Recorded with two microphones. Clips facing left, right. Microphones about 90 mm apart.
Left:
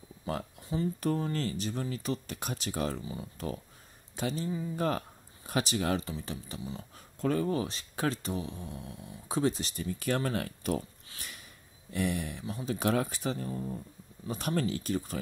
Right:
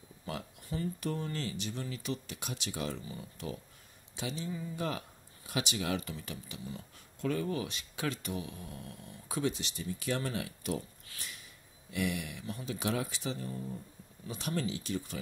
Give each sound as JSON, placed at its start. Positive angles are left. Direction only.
{"t": 0.7, "sound": "speech", "side_deg": 20}
{"t": 1.0, "sound": "speech", "side_deg": 40}
{"t": 11.1, "sound": "a sound", "side_deg": 25}
{"t": 11.9, "sound": "speech", "side_deg": 35}
{"t": 12.7, "sound": "speech", "side_deg": 50}